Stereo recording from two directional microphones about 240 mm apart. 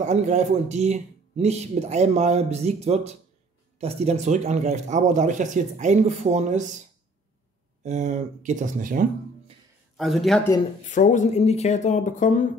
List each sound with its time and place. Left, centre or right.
0.0 s speech: right
7.8 s speech: right
9.9 s speech: centre
10.9 s speech: left